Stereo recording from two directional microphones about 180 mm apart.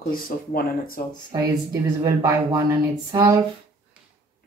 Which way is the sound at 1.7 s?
20° right (ahead or behind).